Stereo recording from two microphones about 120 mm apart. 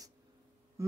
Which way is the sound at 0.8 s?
25° right (ahead or behind).